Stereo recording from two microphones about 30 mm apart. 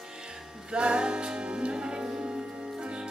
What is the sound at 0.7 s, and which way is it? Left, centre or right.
Music, right.